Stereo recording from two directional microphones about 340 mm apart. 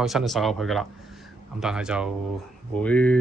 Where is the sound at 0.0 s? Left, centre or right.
Centre.